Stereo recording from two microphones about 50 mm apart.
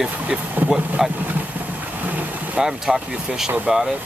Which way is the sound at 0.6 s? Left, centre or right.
Right.